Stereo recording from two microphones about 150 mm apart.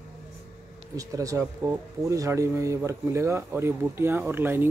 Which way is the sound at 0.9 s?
20° right (ahead or behind).